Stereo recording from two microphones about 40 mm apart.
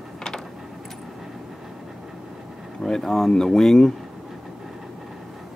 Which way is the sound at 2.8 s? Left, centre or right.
Centre.